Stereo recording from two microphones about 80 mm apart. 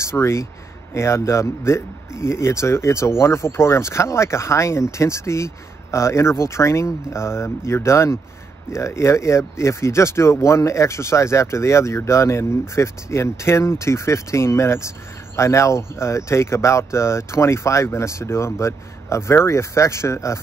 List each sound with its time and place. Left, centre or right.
0.0 s speech: left